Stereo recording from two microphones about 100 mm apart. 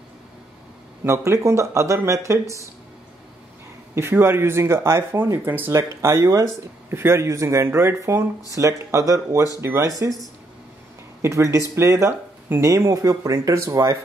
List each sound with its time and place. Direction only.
1.0 s speech: 30° right (ahead or behind)
3.9 s speech: 25° right (ahead or behind)
11.2 s speech: 30° right (ahead or behind)